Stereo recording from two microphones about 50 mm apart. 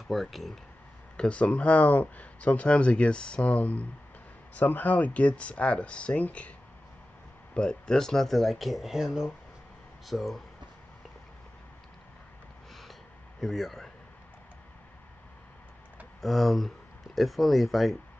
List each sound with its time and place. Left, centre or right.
0.1 s speech: centre
1.1 s speech: centre
7.5 s speech: centre
13.4 s speech: centre
16.2 s speech: centre